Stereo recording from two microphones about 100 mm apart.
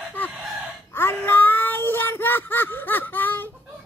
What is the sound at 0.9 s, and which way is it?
Child singing, 20° left (ahead or behind).